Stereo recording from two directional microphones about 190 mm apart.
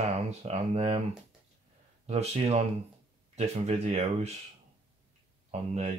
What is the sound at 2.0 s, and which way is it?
Speech, 35° right (ahead or behind).